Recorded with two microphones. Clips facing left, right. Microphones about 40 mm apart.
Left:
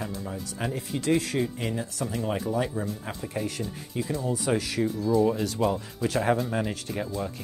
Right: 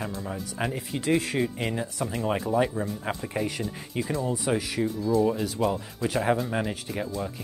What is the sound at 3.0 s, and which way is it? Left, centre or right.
Speech, right.